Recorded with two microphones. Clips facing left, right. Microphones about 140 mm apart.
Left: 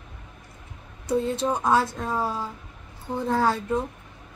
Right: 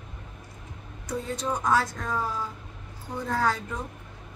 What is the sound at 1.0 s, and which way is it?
Speech, 30° left (ahead or behind).